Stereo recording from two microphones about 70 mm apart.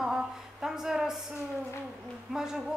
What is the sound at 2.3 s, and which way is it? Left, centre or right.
Speech, centre.